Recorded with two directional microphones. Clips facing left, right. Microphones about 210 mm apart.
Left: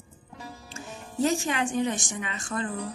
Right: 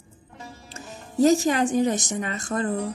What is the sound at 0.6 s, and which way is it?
Speech, 40° right (ahead or behind).